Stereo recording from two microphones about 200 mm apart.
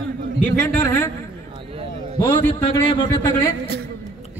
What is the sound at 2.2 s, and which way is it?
A man's voice, 25° left (ahead or behind).